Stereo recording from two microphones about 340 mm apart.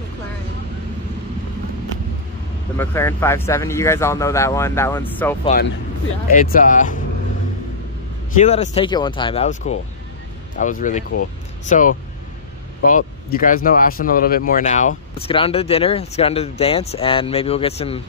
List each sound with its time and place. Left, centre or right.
2.8 s speech: centre
6.3 s speech: left
8.4 s speech: centre
12.8 s speech: left